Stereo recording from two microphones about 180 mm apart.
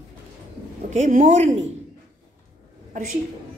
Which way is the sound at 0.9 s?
45° right (ahead or behind).